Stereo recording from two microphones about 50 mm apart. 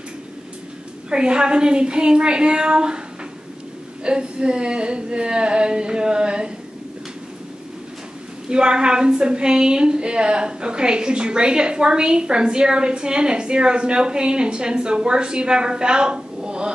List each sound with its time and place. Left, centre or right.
1.1 s a woman's voice: centre
4.0 s a woman's voice: centre
8.5 s a woman's voice: centre